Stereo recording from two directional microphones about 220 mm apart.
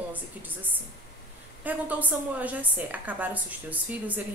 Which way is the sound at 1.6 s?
5° right (ahead or behind).